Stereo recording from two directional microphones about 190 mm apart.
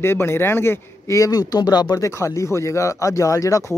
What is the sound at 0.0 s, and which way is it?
Speech, 10° left (ahead or behind).